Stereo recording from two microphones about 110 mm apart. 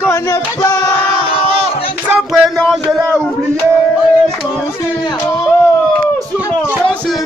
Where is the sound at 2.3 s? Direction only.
Centre (ahead or behind).